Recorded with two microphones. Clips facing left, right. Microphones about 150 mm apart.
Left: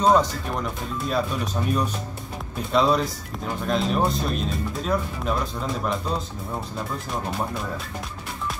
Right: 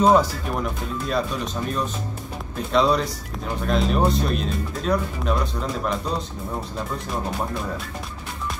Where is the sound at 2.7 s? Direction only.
Centre (ahead or behind).